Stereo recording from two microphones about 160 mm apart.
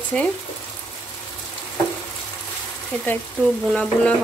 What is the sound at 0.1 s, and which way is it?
Speech, 5° left (ahead or behind).